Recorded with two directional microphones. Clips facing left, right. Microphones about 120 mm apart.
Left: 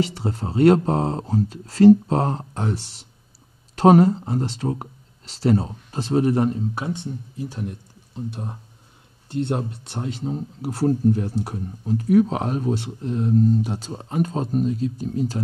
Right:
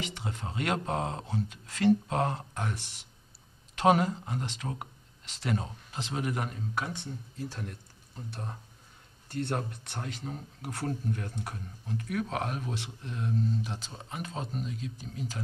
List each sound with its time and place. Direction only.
0.0 s speech: 35° left (ahead or behind)